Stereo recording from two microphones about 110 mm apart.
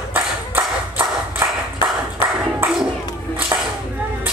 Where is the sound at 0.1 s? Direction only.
15° right (ahead or behind).